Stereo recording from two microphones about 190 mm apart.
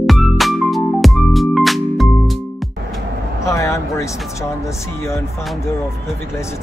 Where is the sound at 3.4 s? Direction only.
15° left (ahead or behind).